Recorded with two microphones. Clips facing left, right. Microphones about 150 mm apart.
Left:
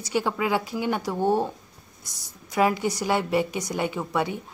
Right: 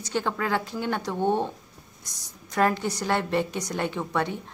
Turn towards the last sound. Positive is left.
turn(degrees=10)  # may be behind; listen again after turning